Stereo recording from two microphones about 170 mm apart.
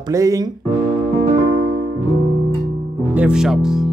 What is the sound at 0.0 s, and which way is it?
Music, 20° right (ahead or behind).